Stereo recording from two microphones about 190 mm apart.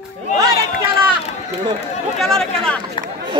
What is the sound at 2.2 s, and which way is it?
Speech, centre (ahead or behind).